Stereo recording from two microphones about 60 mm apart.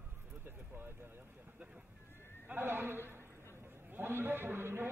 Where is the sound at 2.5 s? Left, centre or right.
Right.